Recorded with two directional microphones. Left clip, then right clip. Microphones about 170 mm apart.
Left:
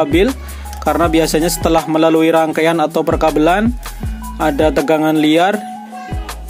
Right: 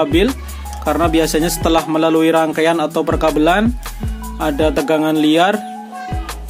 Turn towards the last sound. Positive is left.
turn(degrees=30)  # may be behind; listen again after turning